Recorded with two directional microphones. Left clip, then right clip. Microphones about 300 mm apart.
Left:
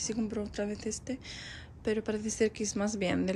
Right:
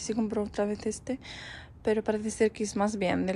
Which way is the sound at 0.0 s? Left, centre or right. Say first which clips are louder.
Right 4 dB; centre.